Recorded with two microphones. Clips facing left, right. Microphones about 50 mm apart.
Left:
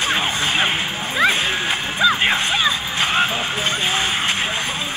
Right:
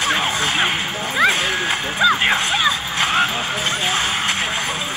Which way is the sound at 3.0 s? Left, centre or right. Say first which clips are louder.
Right 1 dB; left.